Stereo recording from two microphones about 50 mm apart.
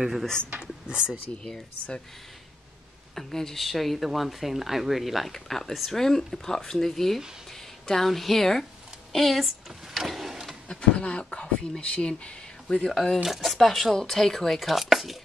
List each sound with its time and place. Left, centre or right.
0.0 s speech: centre
1.4 s a woman's voice: centre
3.2 s a woman's voice: centre
9.9 s a sound: centre
10.7 s speech: centre
12.9 s a woman's voice: centre